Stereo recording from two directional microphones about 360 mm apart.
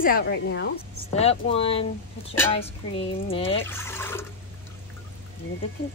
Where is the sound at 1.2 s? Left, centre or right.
Centre.